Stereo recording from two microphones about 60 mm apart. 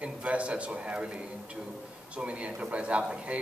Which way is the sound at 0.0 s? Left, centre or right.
Right.